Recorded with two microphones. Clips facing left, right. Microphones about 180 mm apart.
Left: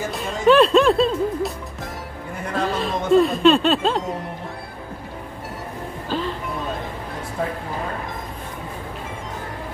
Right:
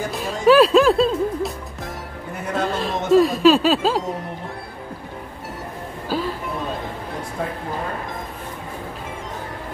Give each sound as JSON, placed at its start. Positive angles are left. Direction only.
{"t": 0.1, "sound": "music", "side_deg": 0}
{"t": 2.5, "sound": "speech", "side_deg": 0}
{"t": 6.0, "sound": "music", "side_deg": -10}